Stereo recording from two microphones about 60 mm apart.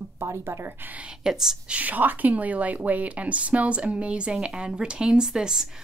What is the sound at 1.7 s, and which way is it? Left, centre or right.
A woman's voice, right.